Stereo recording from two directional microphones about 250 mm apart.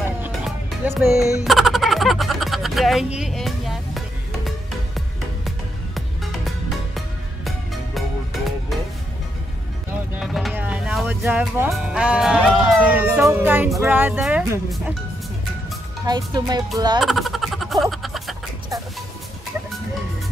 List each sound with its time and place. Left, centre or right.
0.2 s music: centre
7.4 s music: centre
10.1 s speech: centre
16.1 s speech: centre
17.0 s a sound: centre